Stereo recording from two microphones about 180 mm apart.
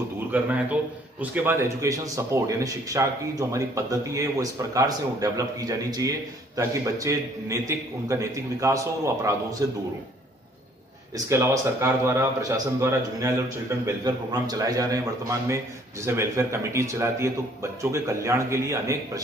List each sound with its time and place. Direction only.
0.3 s a man's voice: 10° right (ahead or behind)
11.2 s a man's voice: 15° right (ahead or behind)